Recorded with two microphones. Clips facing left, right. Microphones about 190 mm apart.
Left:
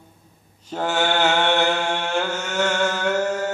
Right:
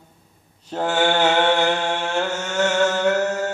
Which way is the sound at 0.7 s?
5° left (ahead or behind).